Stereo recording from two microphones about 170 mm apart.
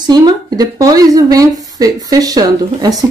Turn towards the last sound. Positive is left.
turn(degrees=-20)  # may be behind; listen again after turning